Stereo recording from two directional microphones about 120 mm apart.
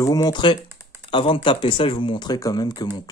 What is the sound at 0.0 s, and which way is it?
Speech, 35° left (ahead or behind).